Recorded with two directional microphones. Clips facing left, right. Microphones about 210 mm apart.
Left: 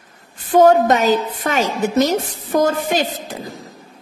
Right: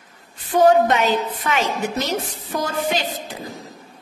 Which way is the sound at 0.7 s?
40° left (ahead or behind).